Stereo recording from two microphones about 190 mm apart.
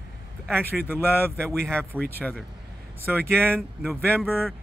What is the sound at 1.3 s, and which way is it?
Speech, 5° left (ahead or behind).